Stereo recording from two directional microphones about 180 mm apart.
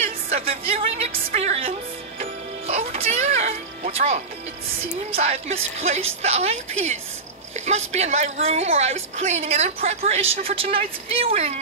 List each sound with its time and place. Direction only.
0.0 s a woman's voice: 35° right (ahead or behind)
2.1 s music: 35° right (ahead or behind)
5.1 s a woman's voice: 35° right (ahead or behind)